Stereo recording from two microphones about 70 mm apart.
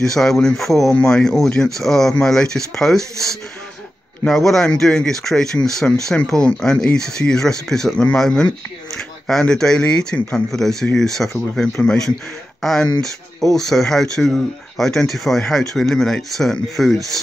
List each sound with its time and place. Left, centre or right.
0.0 s speech: centre